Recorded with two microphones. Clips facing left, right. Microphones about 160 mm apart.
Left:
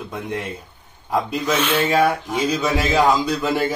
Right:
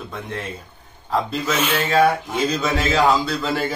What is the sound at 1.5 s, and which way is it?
Speech, 10° right (ahead or behind).